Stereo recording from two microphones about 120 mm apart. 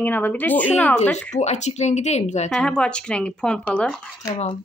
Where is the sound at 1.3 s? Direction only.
75° left (ahead or behind).